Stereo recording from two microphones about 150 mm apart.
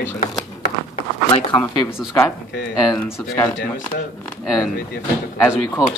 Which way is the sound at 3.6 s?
70° left (ahead or behind).